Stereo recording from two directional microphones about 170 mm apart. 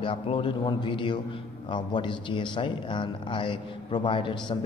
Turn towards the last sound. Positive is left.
turn(degrees=30)  # may be behind; listen again after turning